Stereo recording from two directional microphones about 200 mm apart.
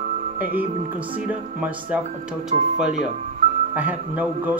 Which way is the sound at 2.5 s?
30° right (ahead or behind).